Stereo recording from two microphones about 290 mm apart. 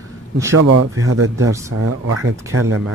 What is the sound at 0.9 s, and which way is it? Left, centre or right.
Speech, right.